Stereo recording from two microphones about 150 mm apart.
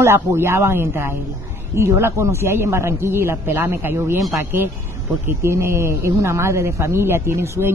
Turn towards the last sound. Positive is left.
turn(degrees=-15)  # may be behind; listen again after turning